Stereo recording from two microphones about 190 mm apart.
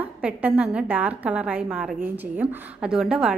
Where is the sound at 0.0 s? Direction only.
10° right (ahead or behind).